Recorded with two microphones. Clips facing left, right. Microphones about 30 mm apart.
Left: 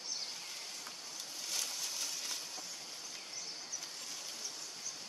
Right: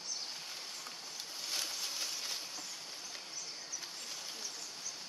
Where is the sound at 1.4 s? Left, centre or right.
Right.